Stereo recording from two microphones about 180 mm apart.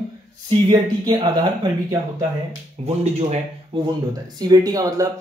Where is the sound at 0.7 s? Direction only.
25° right (ahead or behind).